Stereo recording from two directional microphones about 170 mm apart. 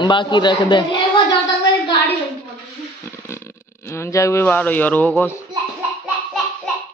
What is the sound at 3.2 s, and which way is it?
Speech, 15° left (ahead or behind).